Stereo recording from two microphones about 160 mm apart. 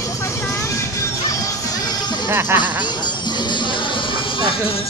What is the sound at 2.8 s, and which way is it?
Music, 25° left (ahead or behind).